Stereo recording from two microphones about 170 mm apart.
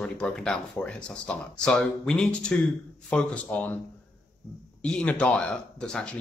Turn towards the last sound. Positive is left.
turn(degrees=5)  # may be behind; listen again after turning